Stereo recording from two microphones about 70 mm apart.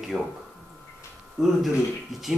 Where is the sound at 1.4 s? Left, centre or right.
Centre.